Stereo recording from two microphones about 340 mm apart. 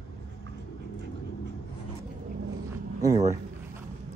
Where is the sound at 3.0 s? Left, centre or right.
Centre.